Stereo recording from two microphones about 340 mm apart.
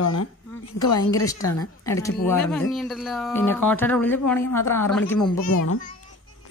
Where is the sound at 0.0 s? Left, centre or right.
Left.